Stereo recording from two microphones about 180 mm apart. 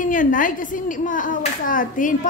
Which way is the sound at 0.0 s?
45° left (ahead or behind).